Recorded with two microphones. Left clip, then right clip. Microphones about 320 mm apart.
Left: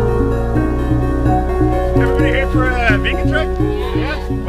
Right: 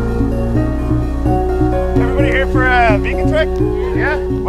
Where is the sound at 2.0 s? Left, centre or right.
Centre.